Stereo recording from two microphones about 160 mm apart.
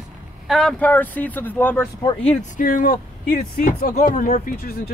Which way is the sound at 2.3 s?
50° left (ahead or behind).